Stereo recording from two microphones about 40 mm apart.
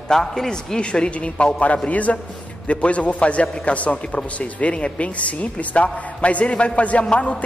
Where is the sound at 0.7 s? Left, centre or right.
Left.